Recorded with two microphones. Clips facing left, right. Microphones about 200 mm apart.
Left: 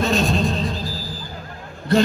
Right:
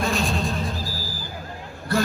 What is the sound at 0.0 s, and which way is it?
Music, 20° left (ahead or behind).